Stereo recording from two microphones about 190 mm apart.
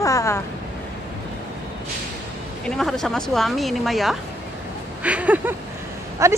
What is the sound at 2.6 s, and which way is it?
Speech, centre (ahead or behind).